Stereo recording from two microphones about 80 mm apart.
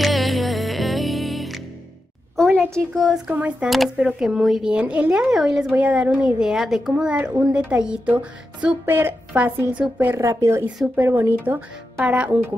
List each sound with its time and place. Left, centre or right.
0.0 s music: centre
2.3 s a sound: centre
2.9 s speech: centre
3.3 s a woman's voice: centre
3.6 s a woman's voice: centre
5.7 s a woman's voice: centre
7.1 s a woman's voice: centre
8.8 s speech: right
10.2 s speech: right
11.0 s speech: right